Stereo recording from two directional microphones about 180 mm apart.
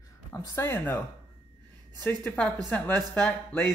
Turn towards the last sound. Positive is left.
turn(degrees=10)  # may be behind; listen again after turning